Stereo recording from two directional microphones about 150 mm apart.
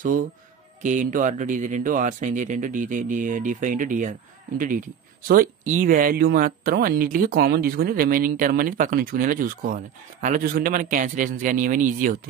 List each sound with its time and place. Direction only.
0.8 s speech: 60° right (ahead or behind)